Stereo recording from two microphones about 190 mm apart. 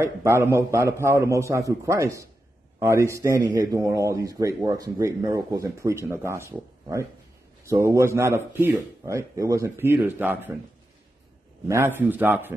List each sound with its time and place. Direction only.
0.0 s speech: 15° right (ahead or behind)
11.6 s speech: 15° right (ahead or behind)